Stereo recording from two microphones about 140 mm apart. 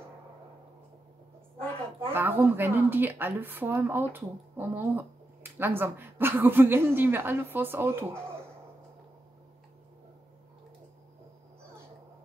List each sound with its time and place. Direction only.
2.0 s speech: 15° right (ahead or behind)